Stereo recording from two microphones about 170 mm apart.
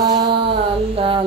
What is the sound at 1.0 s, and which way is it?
Music, 30° right (ahead or behind).